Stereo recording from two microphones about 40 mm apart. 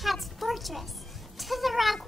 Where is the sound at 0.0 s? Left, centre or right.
Centre.